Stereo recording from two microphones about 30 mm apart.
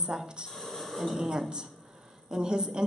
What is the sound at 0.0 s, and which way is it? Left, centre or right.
Speech, centre.